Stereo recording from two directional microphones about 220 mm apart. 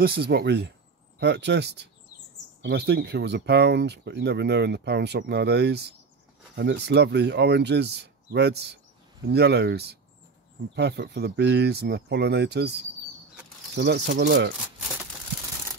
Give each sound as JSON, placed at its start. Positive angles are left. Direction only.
{"t": 0.0, "sound": "speech", "side_deg": -45}
{"t": 13.7, "sound": "speech", "side_deg": -50}